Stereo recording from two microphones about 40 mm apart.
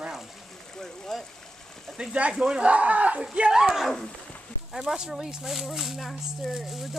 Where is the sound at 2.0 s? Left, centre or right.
Centre.